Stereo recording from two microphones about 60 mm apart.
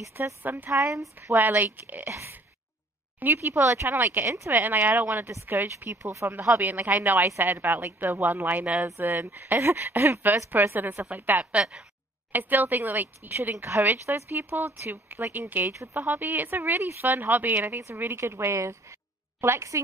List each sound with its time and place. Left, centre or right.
0.4 s speech: right
3.3 s speech: right
3.9 s a woman's voice: right
11.5 s a woman's voice: centre
12.3 s speech: right